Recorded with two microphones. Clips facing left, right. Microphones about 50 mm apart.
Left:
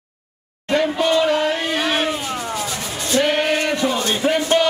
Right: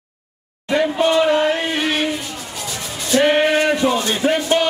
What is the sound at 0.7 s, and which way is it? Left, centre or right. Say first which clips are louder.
Speech: right 1 dB; right.